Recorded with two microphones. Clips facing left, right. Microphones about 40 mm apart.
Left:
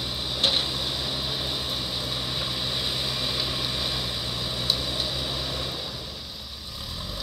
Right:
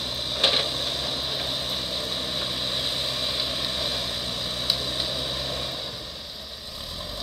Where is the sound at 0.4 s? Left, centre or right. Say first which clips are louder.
Right 2 dB; right.